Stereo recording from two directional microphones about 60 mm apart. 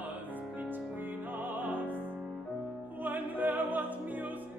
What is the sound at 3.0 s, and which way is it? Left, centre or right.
Opera, right.